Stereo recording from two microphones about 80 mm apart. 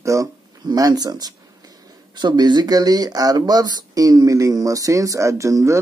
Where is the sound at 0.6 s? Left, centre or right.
Right.